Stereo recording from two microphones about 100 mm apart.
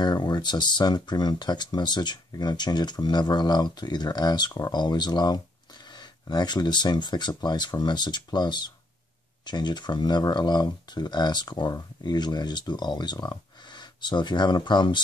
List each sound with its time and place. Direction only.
0.0 s speech: 45° left (ahead or behind)